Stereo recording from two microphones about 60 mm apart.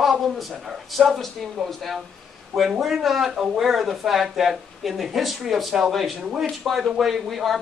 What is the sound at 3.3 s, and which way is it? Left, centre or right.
Speech, centre.